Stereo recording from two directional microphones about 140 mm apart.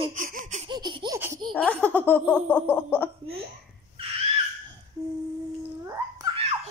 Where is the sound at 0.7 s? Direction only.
30° right (ahead or behind).